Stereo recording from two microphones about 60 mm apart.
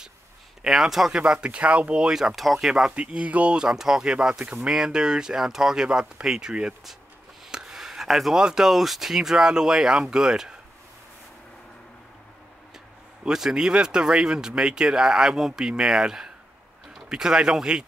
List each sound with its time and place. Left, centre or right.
0.6 s speech: centre; by 2.0 s right
2.0 s speech: centre
2.9 s speech: right
13.2 s speech: centre